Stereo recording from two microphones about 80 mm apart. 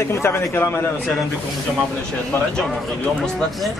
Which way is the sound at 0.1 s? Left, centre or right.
Left.